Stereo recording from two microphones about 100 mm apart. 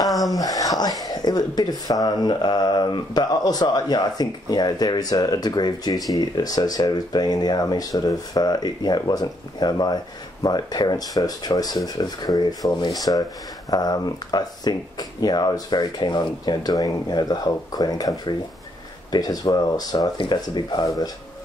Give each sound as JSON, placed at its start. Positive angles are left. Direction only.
{"t": 0.3, "sound": "speech", "side_deg": 35}